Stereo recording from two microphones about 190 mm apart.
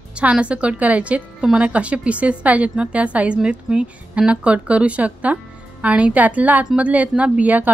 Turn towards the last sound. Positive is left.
turn(degrees=-10)  # may be behind; listen again after turning